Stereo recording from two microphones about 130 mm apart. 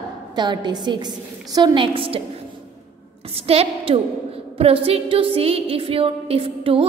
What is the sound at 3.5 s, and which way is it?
A woman's voice, 50° right (ahead or behind).